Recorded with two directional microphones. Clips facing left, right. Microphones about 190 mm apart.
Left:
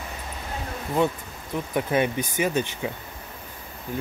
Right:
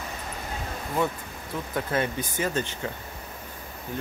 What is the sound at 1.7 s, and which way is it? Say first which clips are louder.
Speech: left 4 dB; 15° left (ahead or behind).